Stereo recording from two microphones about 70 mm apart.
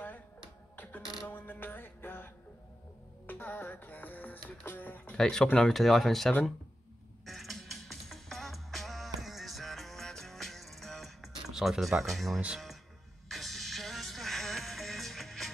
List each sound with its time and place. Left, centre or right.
0.7 s music: left
5.1 s speech: centre
7.2 s music: centre